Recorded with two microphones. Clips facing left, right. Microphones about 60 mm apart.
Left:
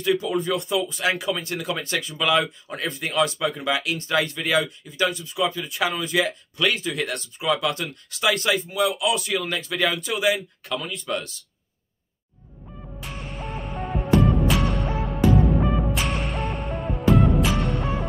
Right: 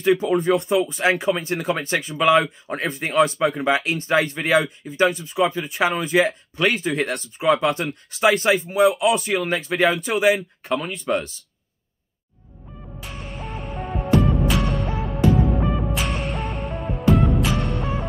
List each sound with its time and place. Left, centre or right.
0.0 s speech: right
13.0 s music: centre